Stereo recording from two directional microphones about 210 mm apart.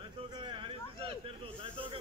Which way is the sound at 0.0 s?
20° right (ahead or behind).